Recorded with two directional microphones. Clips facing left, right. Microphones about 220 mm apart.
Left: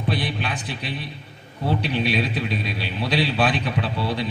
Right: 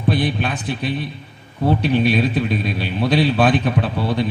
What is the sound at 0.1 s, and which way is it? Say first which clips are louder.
A man's voice: right 7 dB; 50° right (ahead or behind).